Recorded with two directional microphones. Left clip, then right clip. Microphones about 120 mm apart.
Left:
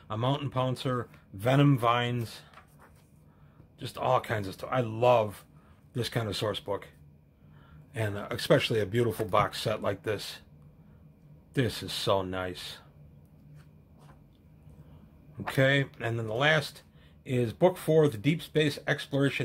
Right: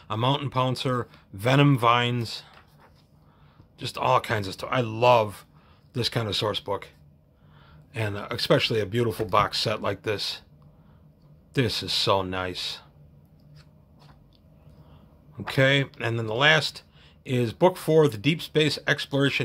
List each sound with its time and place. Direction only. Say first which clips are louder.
0.1 s speech: right 6 dB; 35° right (ahead or behind)
3.7 s speech: right 5 dB; 35° right (ahead or behind)
7.9 s speech: right 3 dB; 20° right (ahead or behind)
11.5 s speech: right 6 dB; 30° right (ahead or behind)
15.3 s speech: right 4 dB; 25° right (ahead or behind)